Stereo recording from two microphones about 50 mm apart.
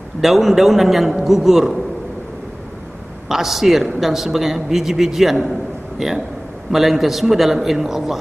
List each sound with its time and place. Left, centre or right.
0.2 s a man's voice: centre
3.3 s a man's voice: centre